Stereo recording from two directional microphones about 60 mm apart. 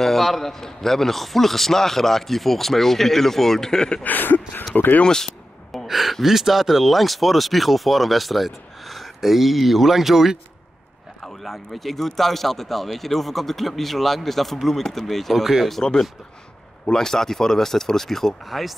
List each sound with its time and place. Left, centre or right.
0.0 s speech: centre
4.0 s a sound: left
4.7 s speech: left
5.0 s speech: centre
11.2 s speech: centre
15.8 s speech: centre